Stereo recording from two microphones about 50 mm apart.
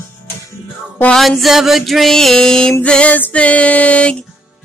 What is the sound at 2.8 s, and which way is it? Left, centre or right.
Music, left.